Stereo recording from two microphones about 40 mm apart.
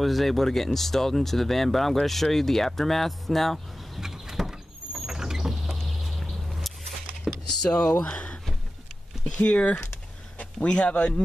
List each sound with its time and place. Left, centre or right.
0.0 s speech: centre
4.0 s vehicle: centre
5.9 s a sound: centre
7.6 s speech: left
9.4 s speech: left
10.3 s a sound: left
10.7 s speech: left